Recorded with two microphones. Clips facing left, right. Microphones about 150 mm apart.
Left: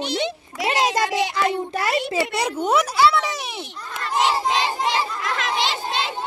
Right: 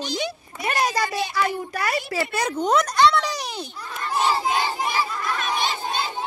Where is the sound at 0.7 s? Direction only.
20° left (ahead or behind).